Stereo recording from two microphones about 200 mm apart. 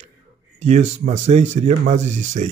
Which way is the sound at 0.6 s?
35° right (ahead or behind).